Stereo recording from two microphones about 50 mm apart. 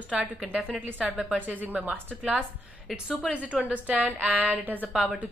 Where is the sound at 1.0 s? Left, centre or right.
Centre.